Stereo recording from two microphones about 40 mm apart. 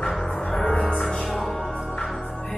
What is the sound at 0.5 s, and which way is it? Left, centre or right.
Music, centre.